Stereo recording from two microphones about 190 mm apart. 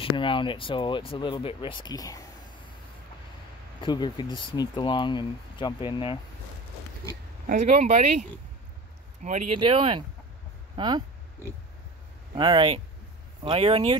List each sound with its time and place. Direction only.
0.0 s speech: 25° left (ahead or behind)
3.8 s speech: 25° left (ahead or behind)
7.4 s speech: 40° right (ahead or behind)
9.7 s speech: 25° right (ahead or behind)
12.4 s speech: 25° right (ahead or behind)